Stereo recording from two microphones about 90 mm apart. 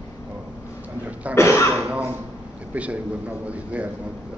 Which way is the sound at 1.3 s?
30° left (ahead or behind).